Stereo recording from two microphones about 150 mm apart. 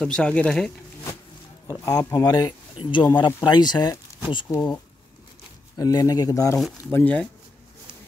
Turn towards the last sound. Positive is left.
turn(degrees=10)  # may be behind; listen again after turning